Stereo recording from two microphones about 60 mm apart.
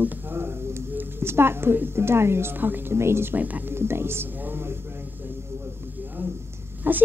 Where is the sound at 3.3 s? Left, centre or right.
Right.